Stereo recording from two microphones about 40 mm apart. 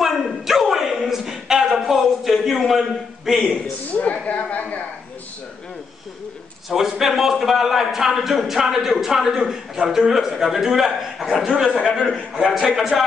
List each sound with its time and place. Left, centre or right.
0.0 s a sound: centre
3.9 s speech: left
6.7 s a man's voice: centre
11.9 s a man's voice: centre